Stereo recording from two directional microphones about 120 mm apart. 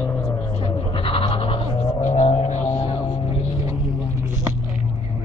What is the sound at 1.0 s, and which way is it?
Toothbrush, 50° left (ahead or behind).